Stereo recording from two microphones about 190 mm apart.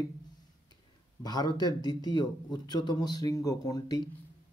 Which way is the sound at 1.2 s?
20° left (ahead or behind).